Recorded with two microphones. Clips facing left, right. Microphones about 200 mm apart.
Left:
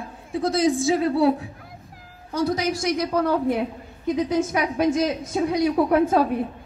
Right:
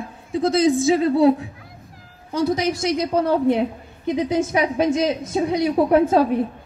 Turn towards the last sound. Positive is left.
turn(degrees=-25)  # may be behind; listen again after turning